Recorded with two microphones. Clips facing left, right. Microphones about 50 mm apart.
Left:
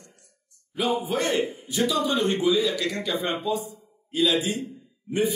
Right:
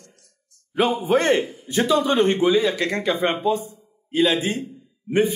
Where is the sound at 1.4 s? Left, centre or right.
Left.